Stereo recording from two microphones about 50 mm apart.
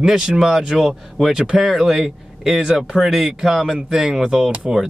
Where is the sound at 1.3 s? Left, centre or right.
Centre.